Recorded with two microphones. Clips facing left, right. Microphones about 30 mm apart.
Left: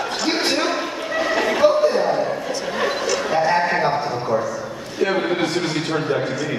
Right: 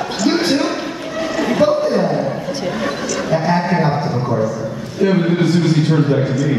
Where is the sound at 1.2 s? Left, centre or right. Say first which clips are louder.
Even; centre.